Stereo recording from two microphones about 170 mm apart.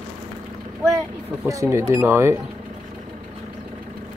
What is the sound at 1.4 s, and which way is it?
Speech, 15° right (ahead or behind).